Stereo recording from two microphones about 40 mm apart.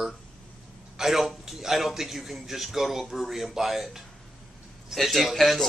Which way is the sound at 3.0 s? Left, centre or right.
Centre.